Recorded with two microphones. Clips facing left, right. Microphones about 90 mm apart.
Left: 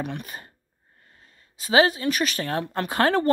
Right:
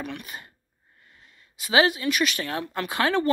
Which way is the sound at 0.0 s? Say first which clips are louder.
Left 3 dB; 40° left (ahead or behind).